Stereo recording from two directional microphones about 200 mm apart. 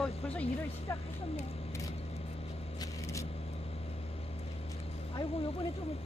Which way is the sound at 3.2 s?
30° left (ahead or behind).